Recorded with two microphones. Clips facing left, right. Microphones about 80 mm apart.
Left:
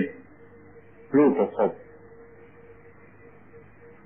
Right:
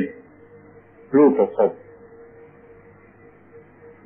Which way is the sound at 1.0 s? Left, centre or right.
Centre.